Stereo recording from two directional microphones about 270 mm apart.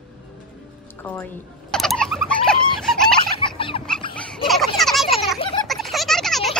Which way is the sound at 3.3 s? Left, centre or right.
Centre.